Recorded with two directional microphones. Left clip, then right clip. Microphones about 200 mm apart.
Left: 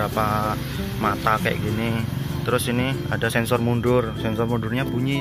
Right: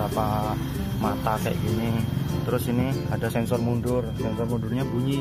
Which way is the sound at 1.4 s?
Centre (ahead or behind).